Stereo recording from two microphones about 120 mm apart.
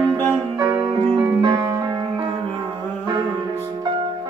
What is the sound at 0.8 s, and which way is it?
Music, 40° right (ahead or behind).